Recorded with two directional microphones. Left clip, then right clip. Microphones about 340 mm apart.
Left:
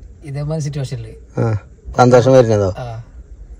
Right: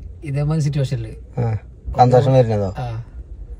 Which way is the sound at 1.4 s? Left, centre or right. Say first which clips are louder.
Left 6 dB; left.